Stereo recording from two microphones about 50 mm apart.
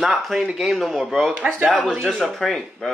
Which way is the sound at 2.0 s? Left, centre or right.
Centre.